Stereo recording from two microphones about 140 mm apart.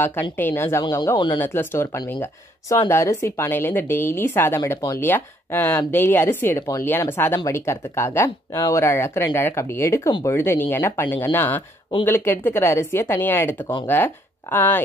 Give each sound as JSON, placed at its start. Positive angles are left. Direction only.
{"t": 0.0, "sound": "speech", "side_deg": 15}
{"t": 1.4, "sound": "speech", "side_deg": 15}